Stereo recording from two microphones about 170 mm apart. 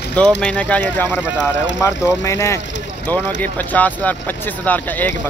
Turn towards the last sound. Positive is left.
turn(degrees=10)  # may be behind; listen again after turning